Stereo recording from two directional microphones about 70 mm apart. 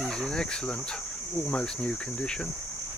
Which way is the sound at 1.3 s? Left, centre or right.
Centre.